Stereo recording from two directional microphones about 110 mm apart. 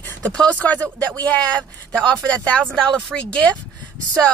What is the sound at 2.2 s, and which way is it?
Speech, 10° left (ahead or behind).